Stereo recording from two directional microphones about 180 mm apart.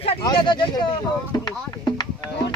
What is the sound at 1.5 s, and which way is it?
Music, 25° left (ahead or behind).